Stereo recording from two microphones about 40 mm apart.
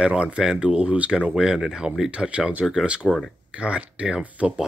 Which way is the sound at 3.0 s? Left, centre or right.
Centre.